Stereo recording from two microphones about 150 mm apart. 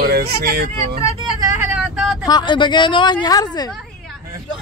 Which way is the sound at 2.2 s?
30° left (ahead or behind).